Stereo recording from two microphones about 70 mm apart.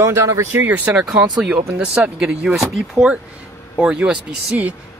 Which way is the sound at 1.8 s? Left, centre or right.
Centre.